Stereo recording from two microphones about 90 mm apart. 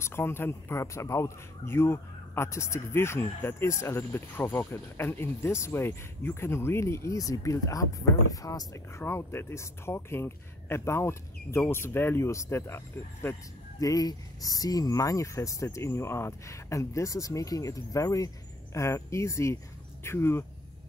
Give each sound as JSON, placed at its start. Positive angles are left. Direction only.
{"t": 0.0, "sound": "speech", "side_deg": 25}
{"t": 13.7, "sound": "speech", "side_deg": 45}